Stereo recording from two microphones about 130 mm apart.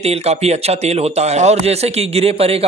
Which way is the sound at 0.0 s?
55° right (ahead or behind).